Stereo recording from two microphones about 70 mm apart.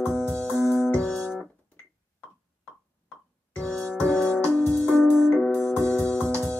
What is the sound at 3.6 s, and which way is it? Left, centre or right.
Music, centre.